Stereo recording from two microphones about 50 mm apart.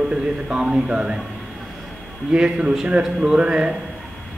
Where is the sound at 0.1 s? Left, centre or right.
Centre.